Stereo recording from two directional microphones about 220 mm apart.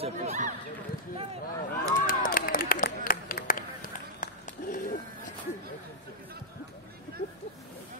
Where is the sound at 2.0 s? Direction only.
40° left (ahead or behind).